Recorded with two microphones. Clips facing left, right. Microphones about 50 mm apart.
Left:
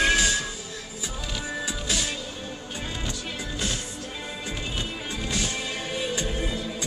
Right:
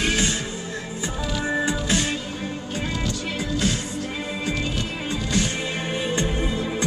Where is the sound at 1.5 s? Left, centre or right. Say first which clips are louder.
Right 8 dB; right.